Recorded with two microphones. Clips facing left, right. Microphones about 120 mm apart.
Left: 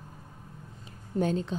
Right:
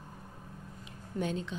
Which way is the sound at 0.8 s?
40° left (ahead or behind).